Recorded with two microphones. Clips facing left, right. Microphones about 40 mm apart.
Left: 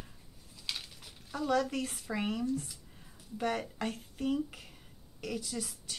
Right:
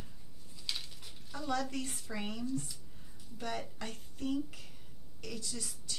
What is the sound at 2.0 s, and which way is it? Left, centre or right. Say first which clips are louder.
Speech: left 5 dB; centre.